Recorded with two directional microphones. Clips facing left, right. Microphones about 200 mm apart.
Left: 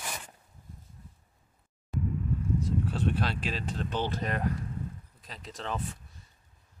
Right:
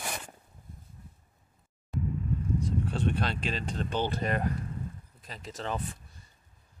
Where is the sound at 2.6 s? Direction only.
5° left (ahead or behind).